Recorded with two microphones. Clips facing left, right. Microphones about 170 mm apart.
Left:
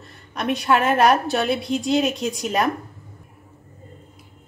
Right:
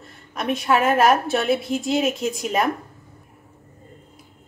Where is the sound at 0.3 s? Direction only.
Centre (ahead or behind).